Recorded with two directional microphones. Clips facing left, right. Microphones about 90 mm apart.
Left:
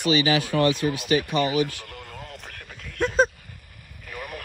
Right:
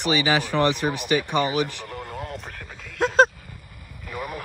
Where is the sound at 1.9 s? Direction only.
40° right (ahead or behind).